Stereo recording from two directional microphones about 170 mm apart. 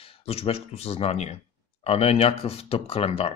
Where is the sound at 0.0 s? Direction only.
35° left (ahead or behind).